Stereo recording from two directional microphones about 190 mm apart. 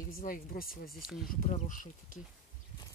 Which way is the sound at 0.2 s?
45° left (ahead or behind).